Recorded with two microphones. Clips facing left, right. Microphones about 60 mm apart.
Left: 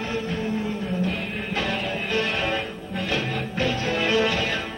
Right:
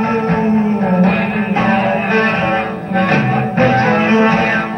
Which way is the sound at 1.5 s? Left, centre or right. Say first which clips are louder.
Right 13 dB; right.